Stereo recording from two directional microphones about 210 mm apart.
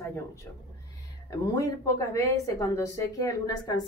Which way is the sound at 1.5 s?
15° left (ahead or behind).